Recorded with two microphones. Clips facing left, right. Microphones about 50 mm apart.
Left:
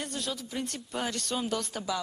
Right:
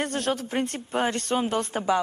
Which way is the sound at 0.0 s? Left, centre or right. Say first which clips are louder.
Right 9 dB; right.